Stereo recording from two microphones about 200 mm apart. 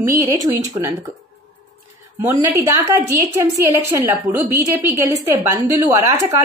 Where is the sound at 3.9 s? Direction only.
15° right (ahead or behind).